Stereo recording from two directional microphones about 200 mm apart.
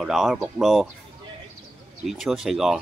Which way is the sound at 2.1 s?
Centre (ahead or behind).